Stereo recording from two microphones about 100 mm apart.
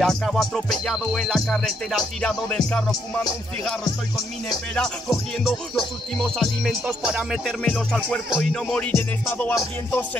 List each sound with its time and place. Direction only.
0.0 s music: centre (ahead or behind)
4.7 s music: 5° left (ahead or behind)
7.6 s music: 10° left (ahead or behind)
8.9 s music: 25° left (ahead or behind)